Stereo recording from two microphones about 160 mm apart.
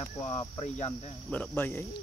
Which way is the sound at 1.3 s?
10° left (ahead or behind).